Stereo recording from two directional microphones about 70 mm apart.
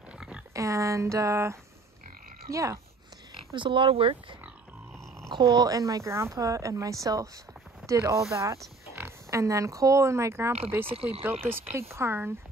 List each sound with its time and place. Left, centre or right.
0.5 s speech: right
3.7 s speech: right
5.3 s speech: right
10.7 s speech: right